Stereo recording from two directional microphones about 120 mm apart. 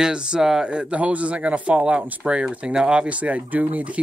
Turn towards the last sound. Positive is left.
turn(degrees=-10)  # may be behind; listen again after turning